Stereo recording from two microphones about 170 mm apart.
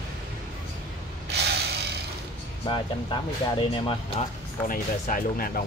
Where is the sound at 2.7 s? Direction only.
30° left (ahead or behind).